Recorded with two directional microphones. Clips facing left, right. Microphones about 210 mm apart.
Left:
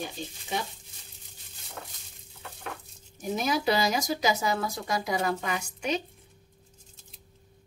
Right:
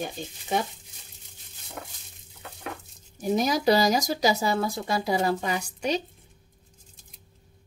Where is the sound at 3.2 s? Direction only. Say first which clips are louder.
Right 4 dB; 35° right (ahead or behind).